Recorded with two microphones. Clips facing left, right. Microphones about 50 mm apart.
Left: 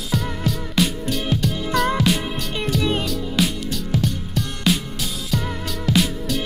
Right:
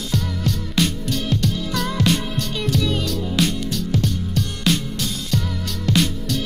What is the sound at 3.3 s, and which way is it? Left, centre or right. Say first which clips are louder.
Music: right 1 dB; centre.